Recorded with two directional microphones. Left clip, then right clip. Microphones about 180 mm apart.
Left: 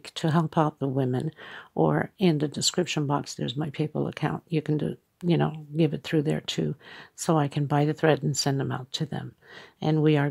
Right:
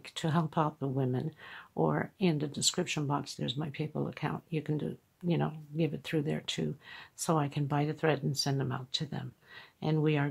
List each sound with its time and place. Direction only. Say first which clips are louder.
0.1 s speech: left 6 dB; 35° left (ahead or behind)